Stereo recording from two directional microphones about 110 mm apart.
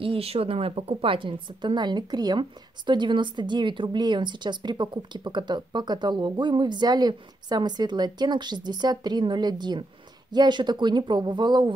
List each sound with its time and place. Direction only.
0.0 s a woman's voice: 60° right (ahead or behind); by 11.7 s 40° right (ahead or behind)